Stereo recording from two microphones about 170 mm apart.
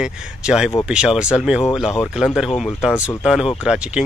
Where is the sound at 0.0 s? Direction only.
5° right (ahead or behind).